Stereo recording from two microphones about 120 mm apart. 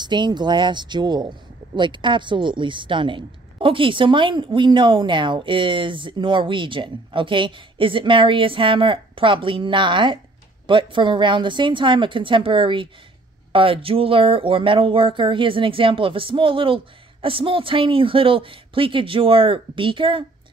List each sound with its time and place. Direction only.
0.0 s a woman's voice: 40° right (ahead or behind)